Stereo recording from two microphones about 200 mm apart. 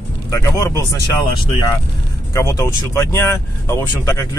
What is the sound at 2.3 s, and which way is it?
Speech, 15° left (ahead or behind).